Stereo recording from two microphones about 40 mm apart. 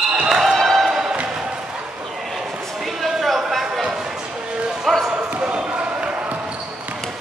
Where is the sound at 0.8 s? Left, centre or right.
Centre.